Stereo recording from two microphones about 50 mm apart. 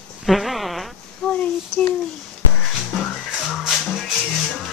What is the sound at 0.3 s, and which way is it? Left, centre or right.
Fart, centre.